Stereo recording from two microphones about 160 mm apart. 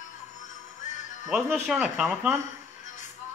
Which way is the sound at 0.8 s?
50° left (ahead or behind).